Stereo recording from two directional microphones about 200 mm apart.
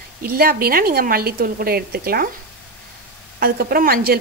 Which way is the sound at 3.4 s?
50° right (ahead or behind).